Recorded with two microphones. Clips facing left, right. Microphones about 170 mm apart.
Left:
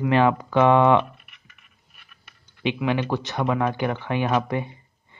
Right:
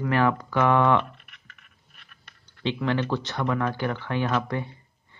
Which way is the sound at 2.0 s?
10° left (ahead or behind).